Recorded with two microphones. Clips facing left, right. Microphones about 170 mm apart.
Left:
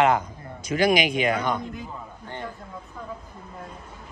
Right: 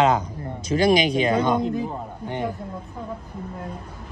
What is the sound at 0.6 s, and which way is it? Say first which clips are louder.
Speech: right 3 dB; 30° right (ahead or behind).